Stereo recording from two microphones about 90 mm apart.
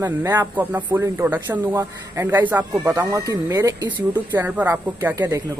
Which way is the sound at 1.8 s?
35° right (ahead or behind).